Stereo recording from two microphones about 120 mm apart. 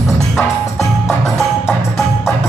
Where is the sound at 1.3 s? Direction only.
Centre (ahead or behind).